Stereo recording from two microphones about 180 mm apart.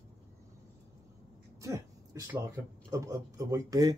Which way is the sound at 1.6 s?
20° right (ahead or behind).